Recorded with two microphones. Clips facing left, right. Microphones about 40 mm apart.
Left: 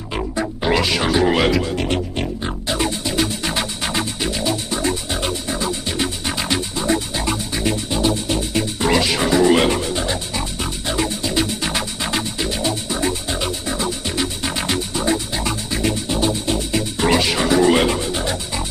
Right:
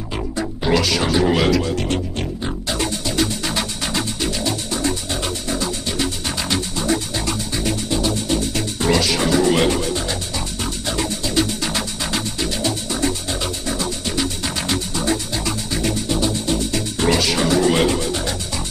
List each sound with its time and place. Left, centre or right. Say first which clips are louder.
0.1 s music: left 3 dB; centre